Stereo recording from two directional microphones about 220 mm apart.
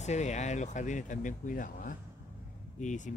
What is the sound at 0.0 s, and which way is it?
Speech, 30° left (ahead or behind).